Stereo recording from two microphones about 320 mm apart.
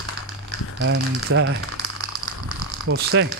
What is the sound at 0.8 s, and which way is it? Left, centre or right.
Speech, right.